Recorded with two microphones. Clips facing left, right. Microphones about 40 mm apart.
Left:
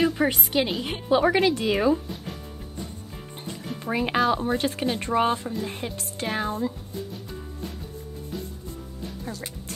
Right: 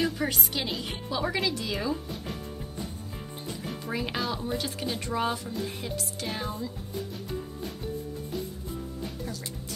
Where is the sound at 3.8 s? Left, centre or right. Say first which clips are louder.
Left 9 dB; left.